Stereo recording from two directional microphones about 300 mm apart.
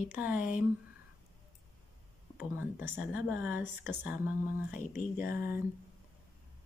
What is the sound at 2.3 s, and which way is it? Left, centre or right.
Speech, centre.